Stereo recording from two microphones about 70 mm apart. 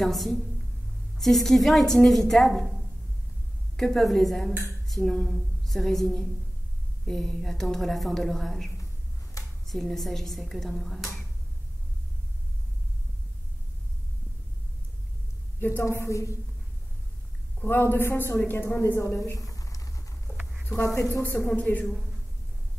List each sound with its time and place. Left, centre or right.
0.0 s a woman's voice: centre
3.7 s a woman's voice: centre
9.4 s a sound: left
9.7 s a woman's voice: centre
15.8 s a woman's voice: left
17.6 s a woman's voice: left
21.2 s a woman's voice: left